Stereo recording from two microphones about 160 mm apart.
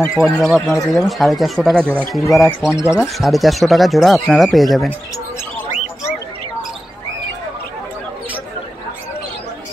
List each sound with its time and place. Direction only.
0.0 s speech: centre (ahead or behind)
2.8 s speech: 20° left (ahead or behind)
3.1 s speech: centre (ahead or behind)